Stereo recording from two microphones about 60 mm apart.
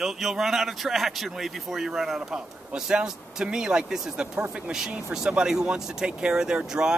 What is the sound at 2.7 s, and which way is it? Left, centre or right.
Speech, centre.